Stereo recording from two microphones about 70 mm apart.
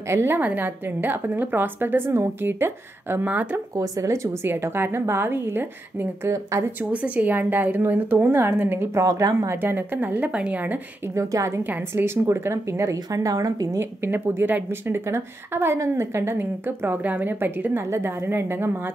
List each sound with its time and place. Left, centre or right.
0.0 s a woman's voice: right
0.4 s a woman's voice: right
3.7 s a woman's voice: right
9.0 s speech: right
9.6 s a woman's voice: right
11.1 s speech: right
11.6 s a woman's voice: right
13.7 s a woman's voice: right
17.8 s a woman's voice: right